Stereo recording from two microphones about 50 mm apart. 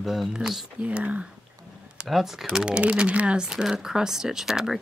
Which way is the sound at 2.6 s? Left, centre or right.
Centre.